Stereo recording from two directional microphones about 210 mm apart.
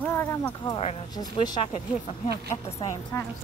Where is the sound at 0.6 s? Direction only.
25° left (ahead or behind).